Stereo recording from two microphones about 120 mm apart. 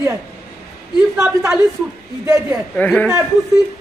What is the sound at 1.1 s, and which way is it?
Speech, 20° right (ahead or behind).